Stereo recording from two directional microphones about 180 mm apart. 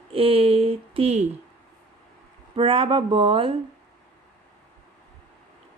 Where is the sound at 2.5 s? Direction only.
30° right (ahead or behind).